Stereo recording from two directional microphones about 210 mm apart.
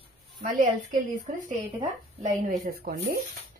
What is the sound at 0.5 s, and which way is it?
A woman's voice, 40° right (ahead or behind).